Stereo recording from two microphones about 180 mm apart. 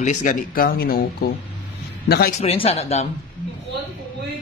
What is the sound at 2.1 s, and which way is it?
Speech, 60° left (ahead or behind).